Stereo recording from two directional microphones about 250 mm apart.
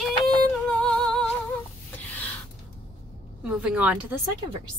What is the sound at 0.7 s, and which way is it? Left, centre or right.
Humming, centre.